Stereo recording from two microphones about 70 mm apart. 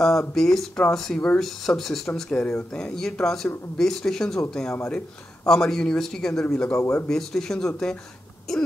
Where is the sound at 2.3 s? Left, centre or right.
Left.